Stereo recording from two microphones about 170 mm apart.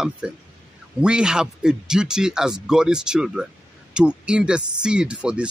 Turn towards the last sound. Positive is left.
turn(degrees=-5)  # may be behind; listen again after turning